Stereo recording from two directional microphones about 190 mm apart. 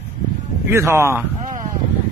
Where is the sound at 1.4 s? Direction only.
40° right (ahead or behind).